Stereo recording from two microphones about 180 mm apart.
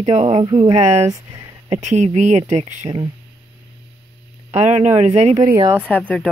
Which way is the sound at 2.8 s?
20° right (ahead or behind).